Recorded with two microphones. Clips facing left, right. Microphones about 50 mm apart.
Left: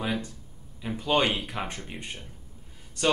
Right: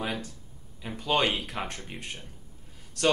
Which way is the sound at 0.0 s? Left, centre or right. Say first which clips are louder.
Left 2 dB; centre.